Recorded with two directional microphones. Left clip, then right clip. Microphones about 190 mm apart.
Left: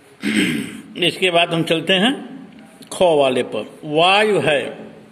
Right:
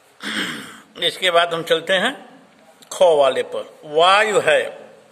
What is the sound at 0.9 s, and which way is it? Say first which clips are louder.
A man's voice: left 1 dB; 20° right (ahead or behind).